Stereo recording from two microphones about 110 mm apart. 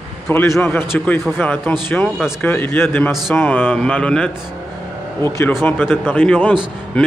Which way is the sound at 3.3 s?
10° left (ahead or behind).